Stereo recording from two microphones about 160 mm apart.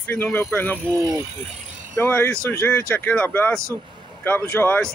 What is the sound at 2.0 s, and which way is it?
Speech, 10° left (ahead or behind).